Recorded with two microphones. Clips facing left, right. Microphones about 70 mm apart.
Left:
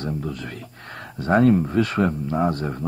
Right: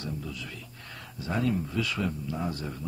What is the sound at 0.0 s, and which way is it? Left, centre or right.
Speech, left.